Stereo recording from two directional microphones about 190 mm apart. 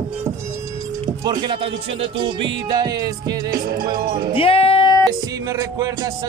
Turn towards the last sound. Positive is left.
turn(degrees=-20)  # may be behind; listen again after turning